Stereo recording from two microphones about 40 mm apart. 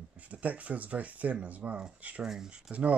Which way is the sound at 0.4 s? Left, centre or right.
Right.